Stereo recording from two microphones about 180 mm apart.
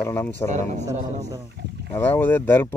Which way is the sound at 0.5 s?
40° right (ahead or behind).